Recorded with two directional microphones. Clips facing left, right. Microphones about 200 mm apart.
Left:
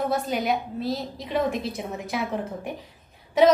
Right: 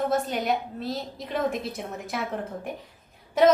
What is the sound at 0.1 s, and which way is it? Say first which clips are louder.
A woman's voice: left 1 dB; centre (ahead or behind).